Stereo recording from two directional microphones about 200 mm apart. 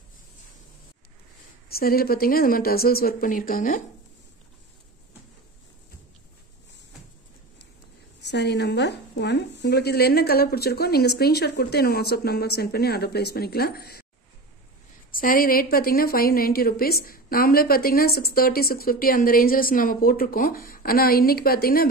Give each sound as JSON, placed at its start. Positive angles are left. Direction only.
{"t": 1.8, "sound": "a woman's voice", "side_deg": 50}
{"t": 8.2, "sound": "a woman's voice", "side_deg": 60}
{"t": 15.1, "sound": "a woman's voice", "side_deg": 45}